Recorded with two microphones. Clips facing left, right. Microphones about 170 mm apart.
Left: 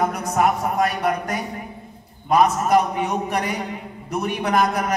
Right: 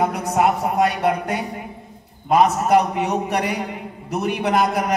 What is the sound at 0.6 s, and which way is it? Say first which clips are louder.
Speech: right 2 dB; 30° right (ahead or behind).